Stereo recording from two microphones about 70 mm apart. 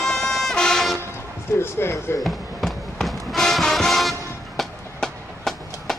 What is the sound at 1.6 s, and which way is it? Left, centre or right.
Basketball bounce, left.